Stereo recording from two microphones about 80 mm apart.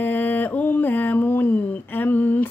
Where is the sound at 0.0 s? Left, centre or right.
Left.